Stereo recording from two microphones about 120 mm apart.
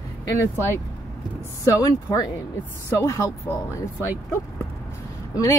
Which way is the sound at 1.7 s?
30° left (ahead or behind).